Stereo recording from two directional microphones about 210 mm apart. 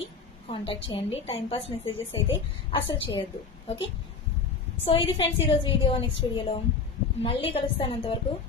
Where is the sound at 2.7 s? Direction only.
25° left (ahead or behind).